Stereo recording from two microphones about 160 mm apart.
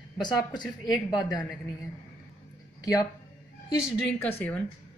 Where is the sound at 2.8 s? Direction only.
20° left (ahead or behind).